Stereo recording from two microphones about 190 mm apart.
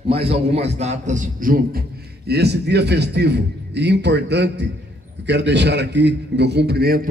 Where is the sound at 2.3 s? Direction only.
60° right (ahead or behind).